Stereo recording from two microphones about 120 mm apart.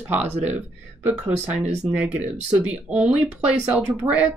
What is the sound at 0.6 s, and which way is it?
Speech, 15° right (ahead or behind).